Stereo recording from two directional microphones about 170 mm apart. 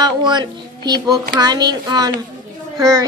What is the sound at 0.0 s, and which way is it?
Speech, 25° right (ahead or behind).